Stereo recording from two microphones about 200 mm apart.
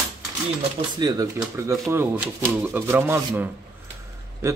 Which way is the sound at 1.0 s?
20° right (ahead or behind).